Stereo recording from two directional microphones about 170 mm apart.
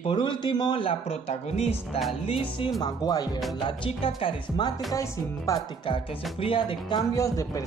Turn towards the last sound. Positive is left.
turn(degrees=20)  # may be behind; listen again after turning